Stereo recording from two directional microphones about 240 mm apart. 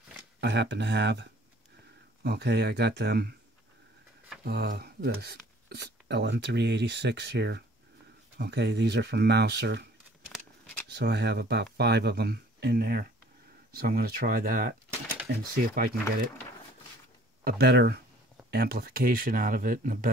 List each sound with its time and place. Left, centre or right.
0.4 s speech: right
4.5 s speech: right
10.3 s a sound: centre
10.9 s speech: right
17.5 s speech: right